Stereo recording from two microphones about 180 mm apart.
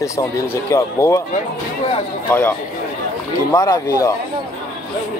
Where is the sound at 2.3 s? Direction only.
10° left (ahead or behind).